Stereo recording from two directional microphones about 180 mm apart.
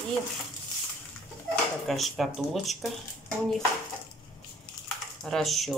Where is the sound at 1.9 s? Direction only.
Centre (ahead or behind).